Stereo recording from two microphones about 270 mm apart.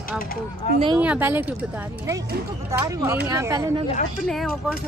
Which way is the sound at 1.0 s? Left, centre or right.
Centre.